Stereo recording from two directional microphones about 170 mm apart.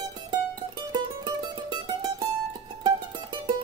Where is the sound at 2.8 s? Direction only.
25° right (ahead or behind).